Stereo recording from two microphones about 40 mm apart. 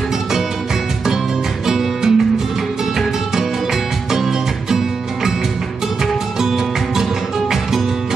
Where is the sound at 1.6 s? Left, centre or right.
Centre.